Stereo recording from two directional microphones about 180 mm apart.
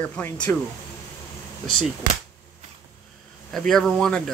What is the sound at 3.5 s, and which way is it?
Speech, centre (ahead or behind).